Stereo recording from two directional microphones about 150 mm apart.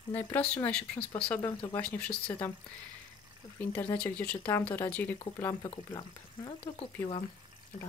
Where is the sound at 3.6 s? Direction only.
15° left (ahead or behind).